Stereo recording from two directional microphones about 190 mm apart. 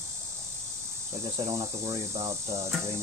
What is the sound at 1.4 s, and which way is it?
Speech, 15° right (ahead or behind).